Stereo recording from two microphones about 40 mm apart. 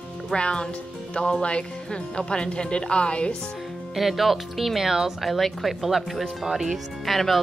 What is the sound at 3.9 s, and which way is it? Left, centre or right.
Speech, centre.